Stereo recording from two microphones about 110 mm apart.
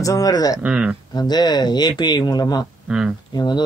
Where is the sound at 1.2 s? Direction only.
40° left (ahead or behind).